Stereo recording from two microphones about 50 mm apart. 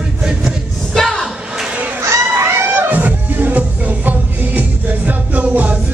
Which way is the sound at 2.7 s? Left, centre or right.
Right.